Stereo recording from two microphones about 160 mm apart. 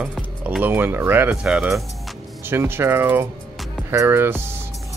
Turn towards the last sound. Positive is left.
turn(degrees=-15)  # may be behind; listen again after turning